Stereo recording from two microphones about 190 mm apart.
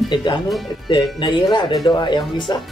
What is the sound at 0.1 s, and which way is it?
Speech, 25° left (ahead or behind).